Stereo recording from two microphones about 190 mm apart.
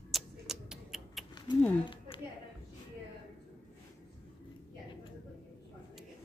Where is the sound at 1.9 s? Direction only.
25° left (ahead or behind).